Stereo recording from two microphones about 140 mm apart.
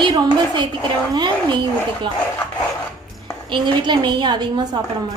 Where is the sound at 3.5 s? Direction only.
35° right (ahead or behind).